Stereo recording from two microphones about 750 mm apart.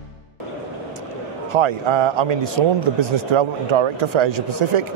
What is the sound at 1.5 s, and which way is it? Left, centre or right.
A man's voice, right.